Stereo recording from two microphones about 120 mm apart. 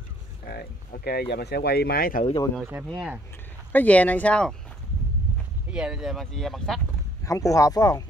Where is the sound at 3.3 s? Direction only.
15° left (ahead or behind).